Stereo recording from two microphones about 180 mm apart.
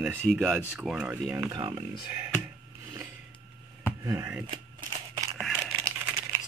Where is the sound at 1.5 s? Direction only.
20° right (ahead or behind).